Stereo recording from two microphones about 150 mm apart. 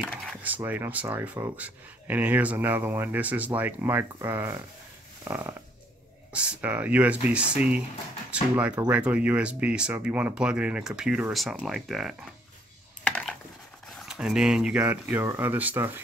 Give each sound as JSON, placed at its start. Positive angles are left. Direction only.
{"t": 0.0, "sound": "speech", "side_deg": -5}
{"t": 13.0, "sound": "computer keyboard", "side_deg": 5}
{"t": 13.8, "sound": "speech", "side_deg": 0}